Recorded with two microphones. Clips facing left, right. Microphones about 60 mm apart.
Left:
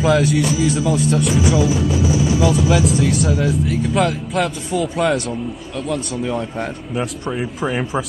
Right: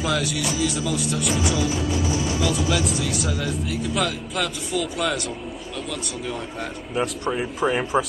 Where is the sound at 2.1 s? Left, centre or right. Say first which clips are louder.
Left 7 dB; centre.